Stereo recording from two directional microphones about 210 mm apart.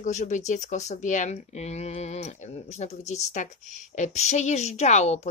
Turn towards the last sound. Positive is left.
turn(degrees=30)  # may be behind; listen again after turning